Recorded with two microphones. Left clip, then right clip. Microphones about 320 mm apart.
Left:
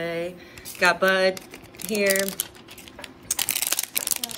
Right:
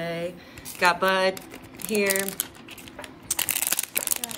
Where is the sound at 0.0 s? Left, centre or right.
Centre.